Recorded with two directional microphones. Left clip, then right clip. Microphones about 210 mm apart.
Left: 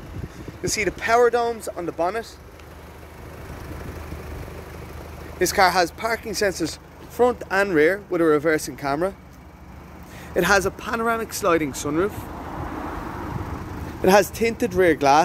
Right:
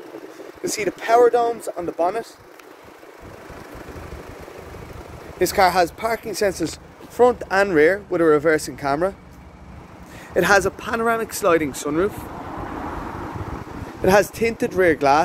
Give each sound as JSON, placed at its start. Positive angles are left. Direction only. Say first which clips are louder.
{"t": 0.6, "sound": "speech", "louder": "even", "side_deg": -5}
{"t": 5.4, "sound": "speech", "louder": "right 1 dB", "side_deg": 5}
{"t": 10.3, "sound": "speech", "louder": "right 3 dB", "side_deg": 0}
{"t": 14.0, "sound": "speech", "louder": "even", "side_deg": 20}